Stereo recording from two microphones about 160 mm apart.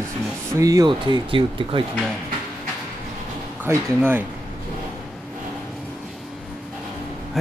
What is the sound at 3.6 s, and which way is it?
Speech, 15° right (ahead or behind).